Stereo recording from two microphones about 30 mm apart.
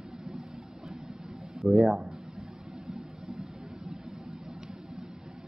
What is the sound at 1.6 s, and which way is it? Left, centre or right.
Speech, centre.